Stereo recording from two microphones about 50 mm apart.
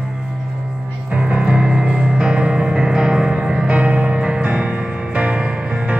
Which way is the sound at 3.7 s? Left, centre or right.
Right.